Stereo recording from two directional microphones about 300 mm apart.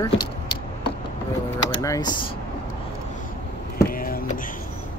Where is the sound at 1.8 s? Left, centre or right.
Centre.